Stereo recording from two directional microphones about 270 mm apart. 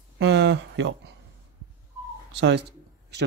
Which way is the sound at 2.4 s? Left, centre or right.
Right.